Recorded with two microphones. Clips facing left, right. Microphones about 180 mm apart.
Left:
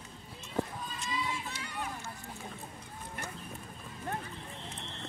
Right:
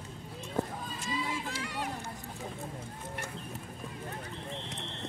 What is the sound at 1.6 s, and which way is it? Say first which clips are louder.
Run: right 3 dB; 90° right.